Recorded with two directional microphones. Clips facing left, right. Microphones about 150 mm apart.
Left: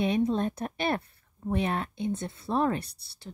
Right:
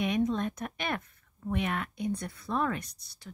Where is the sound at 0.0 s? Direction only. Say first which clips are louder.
Left 3 dB; 30° left (ahead or behind).